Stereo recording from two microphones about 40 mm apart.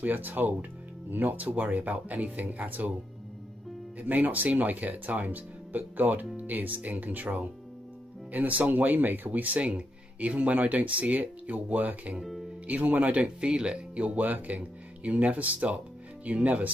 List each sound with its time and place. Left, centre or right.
0.0 s speech: right
4.0 s speech: right
9.6 s speech: right
12.2 s speech: centre
12.6 s speech: right